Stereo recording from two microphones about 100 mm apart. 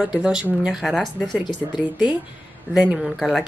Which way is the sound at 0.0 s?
10° right (ahead or behind).